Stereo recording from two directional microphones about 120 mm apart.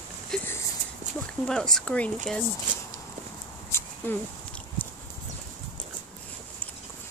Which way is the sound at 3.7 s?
20° left (ahead or behind).